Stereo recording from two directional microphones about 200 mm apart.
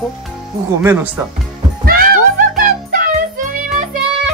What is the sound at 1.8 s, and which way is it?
Music, 45° right (ahead or behind).